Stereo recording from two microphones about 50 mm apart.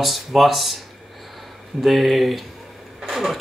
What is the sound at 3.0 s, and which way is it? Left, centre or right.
Vehicle, centre.